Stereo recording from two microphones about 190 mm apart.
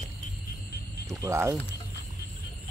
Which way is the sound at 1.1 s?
15° right (ahead or behind).